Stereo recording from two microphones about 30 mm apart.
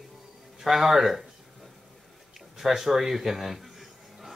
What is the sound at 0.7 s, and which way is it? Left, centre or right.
Speech, centre.